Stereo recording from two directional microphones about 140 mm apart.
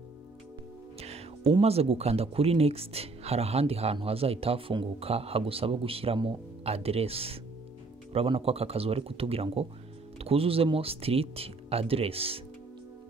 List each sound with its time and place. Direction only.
0.9 s speech: 45° right (ahead or behind)